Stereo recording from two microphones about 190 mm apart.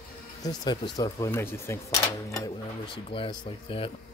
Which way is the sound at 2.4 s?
25° left (ahead or behind).